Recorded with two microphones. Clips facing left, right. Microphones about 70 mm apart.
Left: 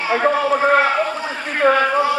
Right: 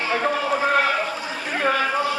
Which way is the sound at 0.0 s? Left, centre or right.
Left.